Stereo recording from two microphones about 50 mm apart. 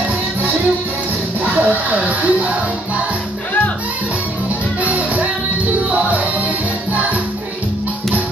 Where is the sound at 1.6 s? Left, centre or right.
Right.